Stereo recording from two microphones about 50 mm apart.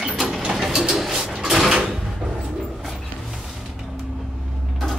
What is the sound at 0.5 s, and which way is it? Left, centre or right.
Bird, centre.